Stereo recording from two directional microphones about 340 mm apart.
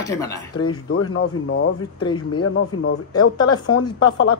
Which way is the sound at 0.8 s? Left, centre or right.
Left.